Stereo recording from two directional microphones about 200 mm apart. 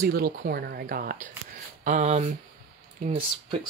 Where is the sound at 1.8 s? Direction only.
35° right (ahead or behind).